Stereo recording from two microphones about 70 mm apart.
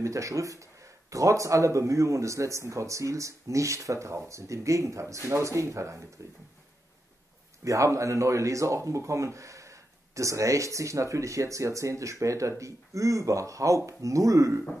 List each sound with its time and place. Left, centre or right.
0.0 s speech: right
7.6 s speech: right